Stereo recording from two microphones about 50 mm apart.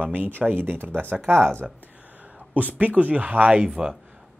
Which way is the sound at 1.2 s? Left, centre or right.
Right.